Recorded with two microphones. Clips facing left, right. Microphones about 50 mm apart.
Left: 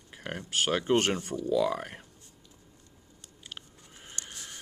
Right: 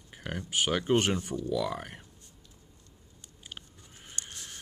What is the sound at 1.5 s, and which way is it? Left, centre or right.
Speech, left.